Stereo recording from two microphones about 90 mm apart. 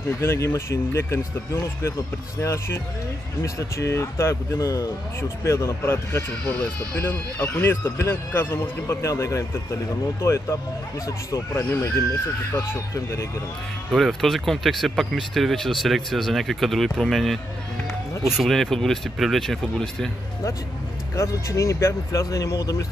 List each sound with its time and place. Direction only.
0.2 s speech: 30° left (ahead or behind)
13.9 s speech: centre (ahead or behind)
21.2 s speech: 35° left (ahead or behind)